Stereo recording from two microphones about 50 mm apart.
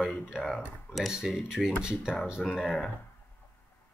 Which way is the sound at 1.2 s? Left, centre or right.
Centre.